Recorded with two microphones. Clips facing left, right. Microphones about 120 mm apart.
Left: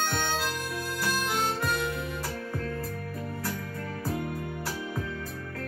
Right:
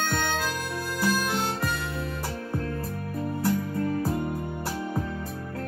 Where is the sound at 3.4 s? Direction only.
25° right (ahead or behind).